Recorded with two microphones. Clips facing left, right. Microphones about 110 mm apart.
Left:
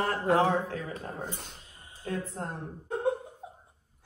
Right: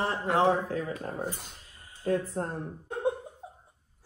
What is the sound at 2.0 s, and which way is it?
Speech, 40° right (ahead or behind).